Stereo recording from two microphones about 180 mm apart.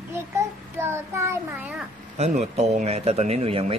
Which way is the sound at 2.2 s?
35° right (ahead or behind).